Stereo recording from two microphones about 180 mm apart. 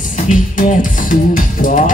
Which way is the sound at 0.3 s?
45° left (ahead or behind).